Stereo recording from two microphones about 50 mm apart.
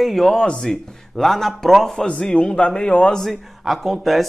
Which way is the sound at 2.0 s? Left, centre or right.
Left.